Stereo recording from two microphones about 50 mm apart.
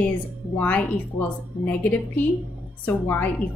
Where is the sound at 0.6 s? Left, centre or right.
Left.